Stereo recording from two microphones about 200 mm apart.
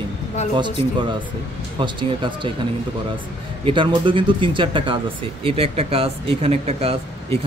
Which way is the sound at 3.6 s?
25° right (ahead or behind).